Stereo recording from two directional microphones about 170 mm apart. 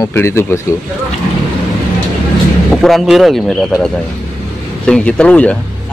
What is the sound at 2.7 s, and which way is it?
Speech, centre (ahead or behind).